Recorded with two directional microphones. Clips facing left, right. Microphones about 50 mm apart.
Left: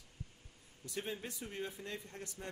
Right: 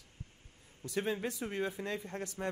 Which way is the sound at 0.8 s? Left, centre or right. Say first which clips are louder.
Right 8 dB; right.